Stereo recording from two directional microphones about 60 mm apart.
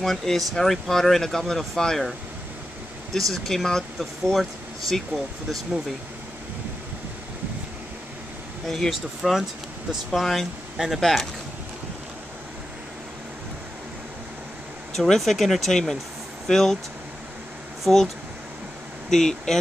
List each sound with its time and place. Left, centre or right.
0.0 s speech: centre
3.2 s speech: centre
8.6 s speech: centre
15.0 s speech: centre
17.8 s speech: centre